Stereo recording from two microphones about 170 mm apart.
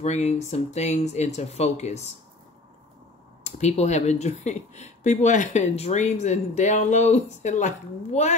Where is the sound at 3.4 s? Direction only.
40° left (ahead or behind).